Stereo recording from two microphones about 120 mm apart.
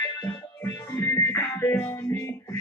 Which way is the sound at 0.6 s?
25° left (ahead or behind).